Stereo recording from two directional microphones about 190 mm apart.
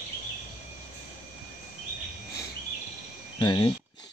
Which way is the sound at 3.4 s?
25° left (ahead or behind).